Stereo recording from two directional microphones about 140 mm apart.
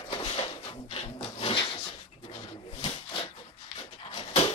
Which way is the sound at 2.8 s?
40° left (ahead or behind).